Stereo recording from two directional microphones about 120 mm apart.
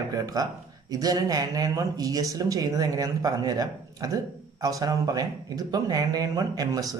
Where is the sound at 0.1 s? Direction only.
30° right (ahead or behind).